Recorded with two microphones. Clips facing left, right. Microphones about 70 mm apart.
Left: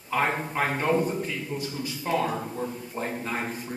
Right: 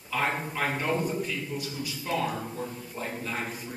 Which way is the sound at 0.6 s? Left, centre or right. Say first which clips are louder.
Left 5 dB; left.